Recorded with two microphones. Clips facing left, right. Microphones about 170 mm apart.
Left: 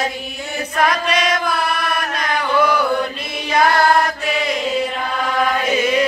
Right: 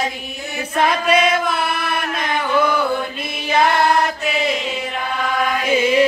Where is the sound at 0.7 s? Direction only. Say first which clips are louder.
Right 2 dB; 25° right (ahead or behind).